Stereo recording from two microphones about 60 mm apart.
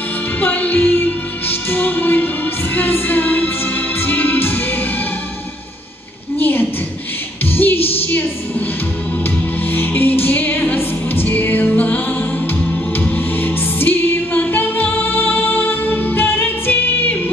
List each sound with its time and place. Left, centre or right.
0.4 s music: left
6.3 s a sound: left
7.5 s music: left
9.7 s music: left
13.0 s music: left